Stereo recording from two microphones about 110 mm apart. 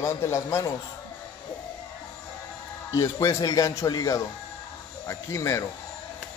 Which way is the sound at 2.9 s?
25° left (ahead or behind).